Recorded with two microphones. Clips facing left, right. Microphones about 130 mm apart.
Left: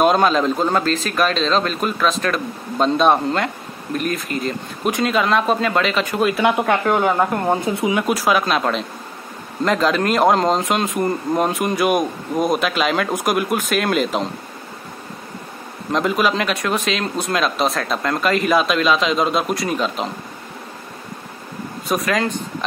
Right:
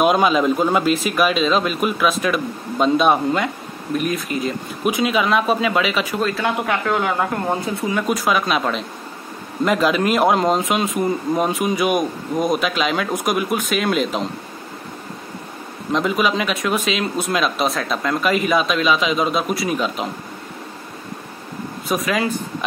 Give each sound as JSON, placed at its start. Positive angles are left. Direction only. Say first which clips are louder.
{"t": 0.0, "sound": "speech", "louder": "even", "side_deg": -5}
{"t": 6.2, "sound": "speech", "louder": "left 7 dB", "side_deg": 20}
{"t": 7.4, "sound": "speech", "louder": "left 3 dB", "side_deg": 15}
{"t": 8.1, "sound": "speech", "louder": "right 1 dB", "side_deg": 0}
{"t": 15.9, "sound": "speech", "louder": "left 1 dB", "side_deg": 0}
{"t": 21.8, "sound": "speech", "louder": "left 1 dB", "side_deg": 0}